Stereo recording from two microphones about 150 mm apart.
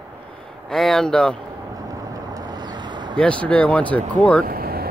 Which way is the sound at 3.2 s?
5° left (ahead or behind).